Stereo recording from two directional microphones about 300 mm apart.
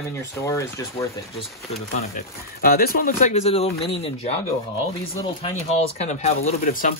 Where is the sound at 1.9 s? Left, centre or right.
Left.